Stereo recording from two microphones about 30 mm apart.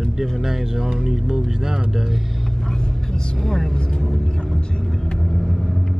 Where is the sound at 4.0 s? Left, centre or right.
Centre.